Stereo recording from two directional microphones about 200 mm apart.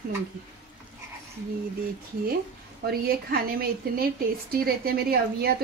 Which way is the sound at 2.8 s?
50° right (ahead or behind).